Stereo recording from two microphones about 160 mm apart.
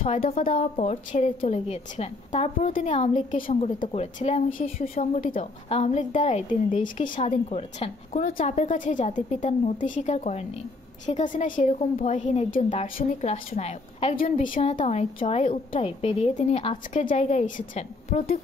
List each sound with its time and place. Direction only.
0.5 s a woman's voice: 40° left (ahead or behind)
3.9 s a woman's voice: 40° left (ahead or behind)
11.8 s a woman's voice: 45° left (ahead or behind)
14.1 s a woman's voice: 60° left (ahead or behind)
14.6 s a woman's voice: 45° left (ahead or behind)